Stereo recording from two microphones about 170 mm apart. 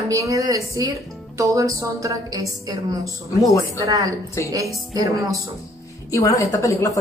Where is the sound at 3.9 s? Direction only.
20° right (ahead or behind).